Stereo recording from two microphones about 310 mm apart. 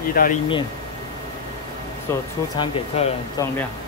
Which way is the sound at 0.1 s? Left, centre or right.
Left.